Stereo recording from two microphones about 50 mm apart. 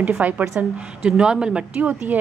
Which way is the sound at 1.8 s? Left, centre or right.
Right.